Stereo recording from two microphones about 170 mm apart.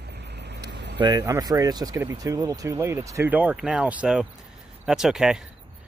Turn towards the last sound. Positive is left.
turn(degrees=-5)  # may be behind; listen again after turning